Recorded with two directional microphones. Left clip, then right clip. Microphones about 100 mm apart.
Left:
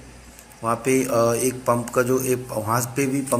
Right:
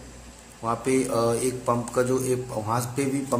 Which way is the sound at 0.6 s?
25° left (ahead or behind).